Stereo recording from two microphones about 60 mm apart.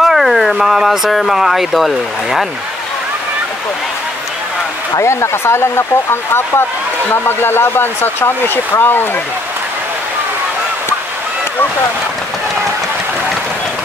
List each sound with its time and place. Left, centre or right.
0.0 s speech: centre
5.0 s speech: left